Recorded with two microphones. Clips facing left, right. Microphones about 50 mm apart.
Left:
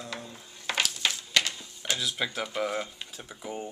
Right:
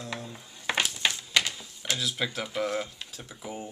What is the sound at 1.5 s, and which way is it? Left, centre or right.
Speech, centre.